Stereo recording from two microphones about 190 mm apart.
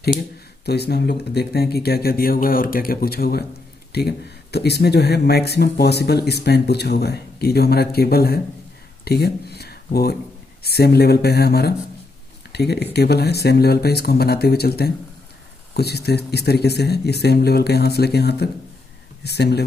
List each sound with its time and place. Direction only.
0.7 s speech: 55° left (ahead or behind)